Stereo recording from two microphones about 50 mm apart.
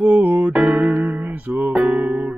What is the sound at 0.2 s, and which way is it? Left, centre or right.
Music, right.